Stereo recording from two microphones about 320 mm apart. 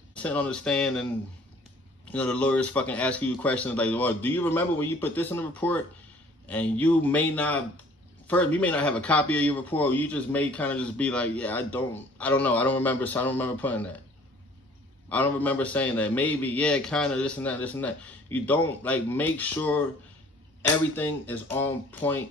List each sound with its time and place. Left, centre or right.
0.1 s a man's voice: centre
2.0 s a man's voice: centre
15.0 s a man's voice: centre